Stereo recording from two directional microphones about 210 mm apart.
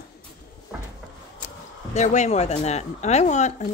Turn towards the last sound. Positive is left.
turn(degrees=35)  # may be behind; listen again after turning